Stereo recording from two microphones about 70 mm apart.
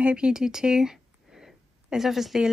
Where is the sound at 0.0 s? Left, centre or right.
Centre.